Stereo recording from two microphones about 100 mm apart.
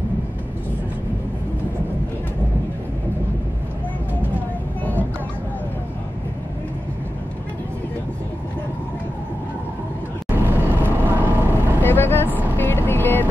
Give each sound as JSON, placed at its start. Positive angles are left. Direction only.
{"t": 10.3, "sound": "vehicle", "side_deg": -20}
{"t": 11.8, "sound": "vehicle", "side_deg": 20}